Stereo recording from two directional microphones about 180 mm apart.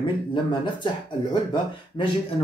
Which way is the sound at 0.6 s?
25° left (ahead or behind).